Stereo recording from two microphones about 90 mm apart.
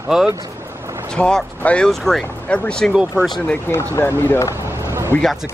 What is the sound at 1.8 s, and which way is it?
Speech, 5° left (ahead or behind).